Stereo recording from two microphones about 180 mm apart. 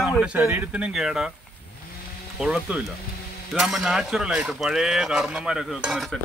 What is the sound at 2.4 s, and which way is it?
Speech, 5° right (ahead or behind).